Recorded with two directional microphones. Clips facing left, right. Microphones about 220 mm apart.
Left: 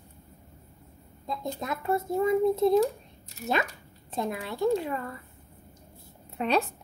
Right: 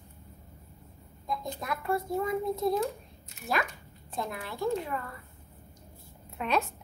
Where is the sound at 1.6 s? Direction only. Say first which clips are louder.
Left 3 dB; 20° left (ahead or behind).